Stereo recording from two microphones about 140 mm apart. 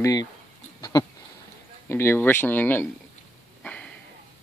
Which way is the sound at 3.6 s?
10° left (ahead or behind).